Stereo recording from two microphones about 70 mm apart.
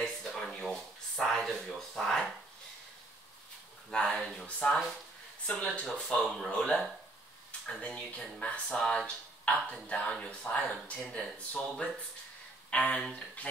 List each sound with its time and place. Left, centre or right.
0.0 s a sound: centre
3.9 s speech: centre
4.6 s speech: left
5.5 s speech: centre